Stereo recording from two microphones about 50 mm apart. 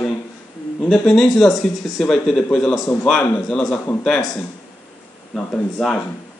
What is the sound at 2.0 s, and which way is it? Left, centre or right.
Speech, centre.